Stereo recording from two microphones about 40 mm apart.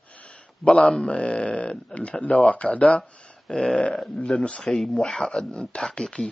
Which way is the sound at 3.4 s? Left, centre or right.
Centre.